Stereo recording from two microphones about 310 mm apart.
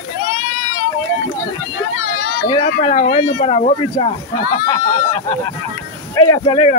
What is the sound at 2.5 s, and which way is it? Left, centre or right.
Speech, centre.